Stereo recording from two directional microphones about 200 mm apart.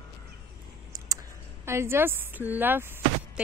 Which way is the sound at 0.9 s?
20° right (ahead or behind).